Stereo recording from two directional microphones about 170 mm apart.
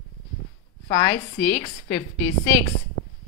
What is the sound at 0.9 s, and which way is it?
Speech, 55° left (ahead or behind).